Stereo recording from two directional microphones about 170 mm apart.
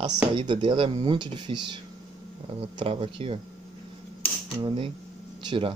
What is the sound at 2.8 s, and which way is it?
Speech, 35° right (ahead or behind).